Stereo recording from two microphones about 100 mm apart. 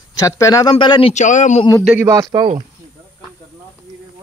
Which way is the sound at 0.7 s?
55° left (ahead or behind).